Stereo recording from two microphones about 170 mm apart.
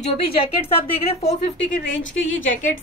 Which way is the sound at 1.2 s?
90° left.